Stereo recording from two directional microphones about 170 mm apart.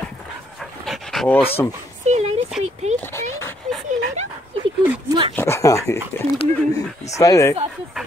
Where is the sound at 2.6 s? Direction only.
40° right (ahead or behind).